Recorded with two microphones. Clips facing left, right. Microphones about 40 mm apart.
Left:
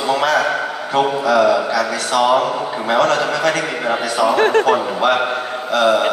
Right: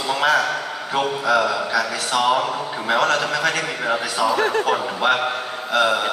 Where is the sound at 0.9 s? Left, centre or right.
Centre.